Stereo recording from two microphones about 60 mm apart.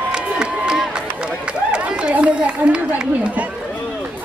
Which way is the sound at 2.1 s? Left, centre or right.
Centre.